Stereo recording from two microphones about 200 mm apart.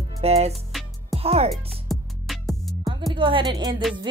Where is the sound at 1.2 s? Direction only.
30° right (ahead or behind).